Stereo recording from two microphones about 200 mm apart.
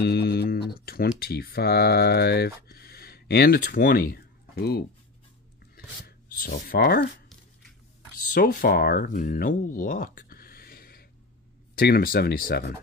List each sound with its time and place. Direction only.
0.0 s speech: 55° left (ahead or behind)
6.0 s speech: 50° left (ahead or behind)
8.3 s speech: 45° left (ahead or behind)